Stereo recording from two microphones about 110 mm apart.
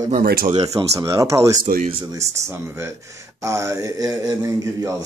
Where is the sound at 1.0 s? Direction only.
30° right (ahead or behind).